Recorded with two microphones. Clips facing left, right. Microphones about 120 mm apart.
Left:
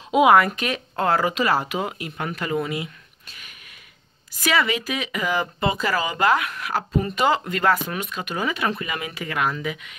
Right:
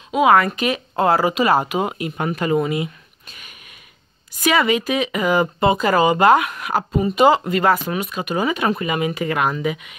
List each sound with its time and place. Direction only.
0.1 s speech: 10° left (ahead or behind)
0.6 s speech: 10° right (ahead or behind)